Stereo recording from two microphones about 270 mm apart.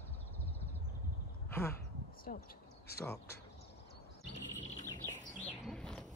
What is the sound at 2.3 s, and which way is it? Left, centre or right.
Speech, left.